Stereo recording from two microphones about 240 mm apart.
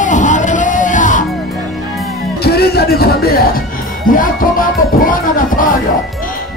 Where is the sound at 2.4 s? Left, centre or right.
Left.